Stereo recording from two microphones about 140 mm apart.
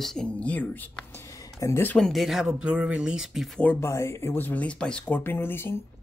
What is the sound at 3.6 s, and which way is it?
Speech, 20° left (ahead or behind).